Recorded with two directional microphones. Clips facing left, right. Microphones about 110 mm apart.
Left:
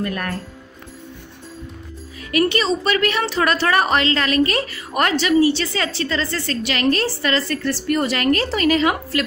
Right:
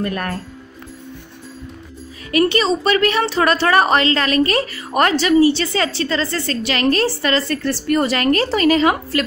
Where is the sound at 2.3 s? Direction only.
30° right (ahead or behind).